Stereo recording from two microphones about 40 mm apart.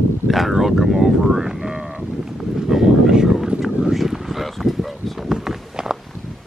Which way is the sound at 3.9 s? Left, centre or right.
Centre.